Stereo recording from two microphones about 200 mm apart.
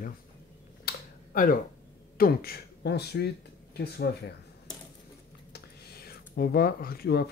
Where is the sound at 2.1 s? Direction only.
50° left (ahead or behind).